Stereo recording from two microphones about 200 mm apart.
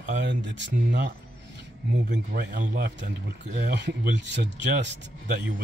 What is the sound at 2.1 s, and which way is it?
Speech, 45° right (ahead or behind).